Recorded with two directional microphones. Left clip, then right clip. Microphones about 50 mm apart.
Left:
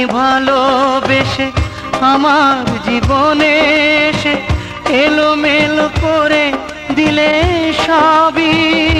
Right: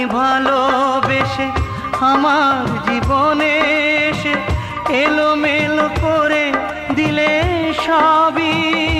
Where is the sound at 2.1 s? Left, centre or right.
Left.